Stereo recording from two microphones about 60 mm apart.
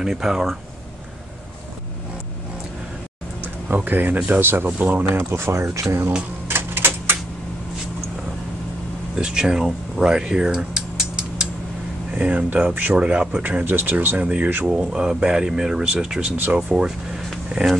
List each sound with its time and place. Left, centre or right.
0.0 s speech: centre
3.3 s a sound: right
4.3 s speech: right
5.1 s speech: right
6.4 s typewriter: right
9.1 s speech: centre
13.4 s speech: right
14.9 s speech: centre